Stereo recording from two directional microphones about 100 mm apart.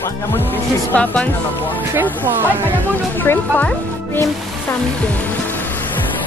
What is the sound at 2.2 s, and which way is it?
Speech, 20° right (ahead or behind).